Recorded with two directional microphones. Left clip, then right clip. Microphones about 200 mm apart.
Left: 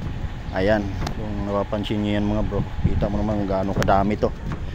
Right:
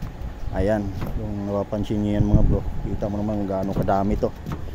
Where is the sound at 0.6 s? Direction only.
15° right (ahead or behind).